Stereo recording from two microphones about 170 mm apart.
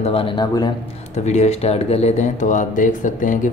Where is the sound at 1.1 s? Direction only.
40° left (ahead or behind).